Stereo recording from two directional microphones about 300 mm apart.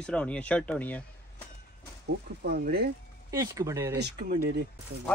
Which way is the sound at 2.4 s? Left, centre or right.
Right.